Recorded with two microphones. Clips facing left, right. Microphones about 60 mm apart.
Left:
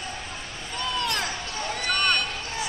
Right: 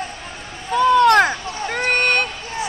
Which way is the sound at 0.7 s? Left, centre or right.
Right.